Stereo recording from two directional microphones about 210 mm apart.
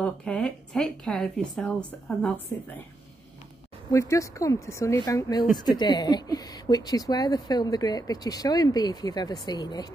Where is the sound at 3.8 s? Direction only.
15° left (ahead or behind).